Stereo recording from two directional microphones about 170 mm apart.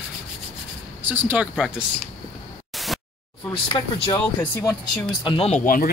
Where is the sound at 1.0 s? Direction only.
10° right (ahead or behind).